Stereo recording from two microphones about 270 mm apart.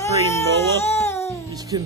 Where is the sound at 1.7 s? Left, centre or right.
Centre.